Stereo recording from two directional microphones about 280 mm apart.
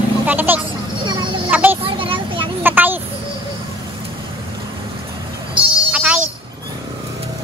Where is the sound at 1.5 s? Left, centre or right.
Centre.